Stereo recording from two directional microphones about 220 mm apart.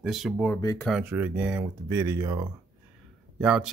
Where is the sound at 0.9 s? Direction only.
5° right (ahead or behind).